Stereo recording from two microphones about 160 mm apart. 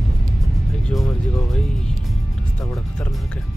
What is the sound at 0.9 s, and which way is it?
Speech, 5° left (ahead or behind).